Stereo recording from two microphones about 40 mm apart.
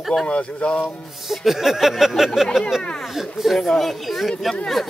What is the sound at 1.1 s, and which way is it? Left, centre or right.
Music, centre.